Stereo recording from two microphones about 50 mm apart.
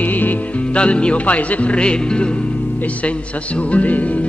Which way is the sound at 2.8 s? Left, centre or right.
Left.